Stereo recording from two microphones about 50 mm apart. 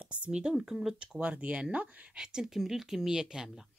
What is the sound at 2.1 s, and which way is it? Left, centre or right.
A woman's voice, centre.